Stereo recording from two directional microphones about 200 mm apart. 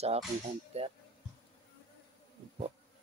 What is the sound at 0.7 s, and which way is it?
Music, 35° right (ahead or behind).